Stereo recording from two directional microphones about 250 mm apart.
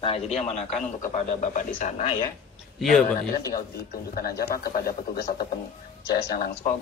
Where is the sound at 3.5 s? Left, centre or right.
Left.